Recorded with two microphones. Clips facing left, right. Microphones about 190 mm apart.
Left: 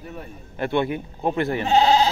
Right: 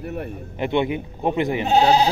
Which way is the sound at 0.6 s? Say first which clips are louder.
Right 1 dB; 15° right (ahead or behind).